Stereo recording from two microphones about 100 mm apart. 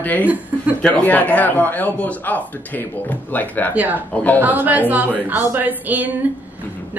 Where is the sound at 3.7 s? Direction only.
15° right (ahead or behind).